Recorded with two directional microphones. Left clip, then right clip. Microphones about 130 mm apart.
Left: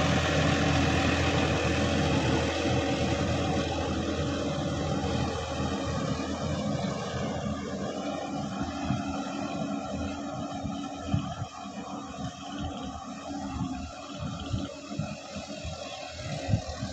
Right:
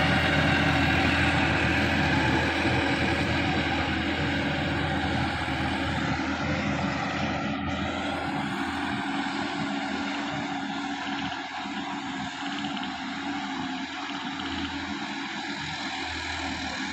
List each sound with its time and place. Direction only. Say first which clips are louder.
0.0 s vehicle: right 3 dB; 35° left (ahead or behind)
2.0 s vehicle: right 3 dB; 45° left (ahead or behind)